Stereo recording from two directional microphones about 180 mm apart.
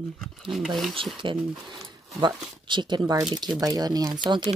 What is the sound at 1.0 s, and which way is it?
Speech, 30° right (ahead or behind).